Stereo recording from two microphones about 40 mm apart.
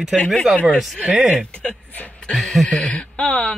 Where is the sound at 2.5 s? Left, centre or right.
Centre.